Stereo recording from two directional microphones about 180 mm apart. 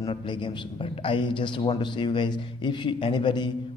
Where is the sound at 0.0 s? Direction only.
25° left (ahead or behind).